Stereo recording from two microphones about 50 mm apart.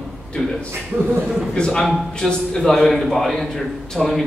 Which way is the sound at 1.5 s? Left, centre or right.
Centre.